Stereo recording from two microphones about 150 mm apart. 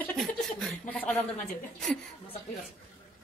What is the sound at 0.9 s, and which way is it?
Speech, 10° left (ahead or behind).